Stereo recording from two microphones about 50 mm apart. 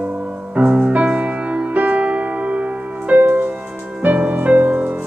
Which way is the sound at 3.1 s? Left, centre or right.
Right.